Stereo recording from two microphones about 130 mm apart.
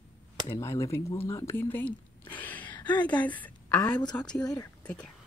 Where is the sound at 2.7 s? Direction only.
35° left (ahead or behind).